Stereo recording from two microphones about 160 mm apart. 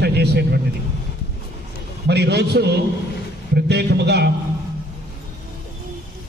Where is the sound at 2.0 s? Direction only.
90° right.